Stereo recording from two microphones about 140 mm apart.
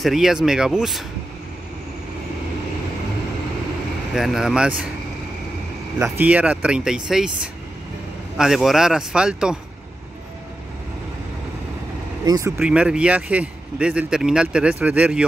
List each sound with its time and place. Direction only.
0.0 s speech: 5° right (ahead or behind)
4.1 s speech: centre (ahead or behind)
5.9 s a man's voice: 10° right (ahead or behind)
8.4 s speech: centre (ahead or behind)
12.3 s speech: 25° right (ahead or behind)
12.6 s a man's voice: 5° right (ahead or behind)